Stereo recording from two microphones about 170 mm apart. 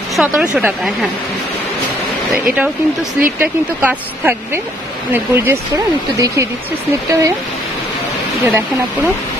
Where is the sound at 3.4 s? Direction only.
10° right (ahead or behind).